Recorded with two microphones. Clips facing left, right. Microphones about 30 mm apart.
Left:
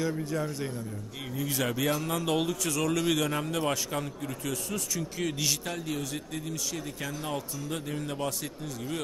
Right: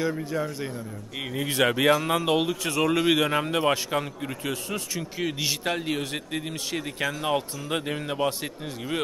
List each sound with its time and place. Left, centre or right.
0.0 s speech: centre
1.3 s a man's voice: right
5.9 s speech: right